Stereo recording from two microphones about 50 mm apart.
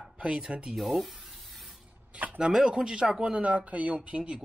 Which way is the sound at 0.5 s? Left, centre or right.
Centre.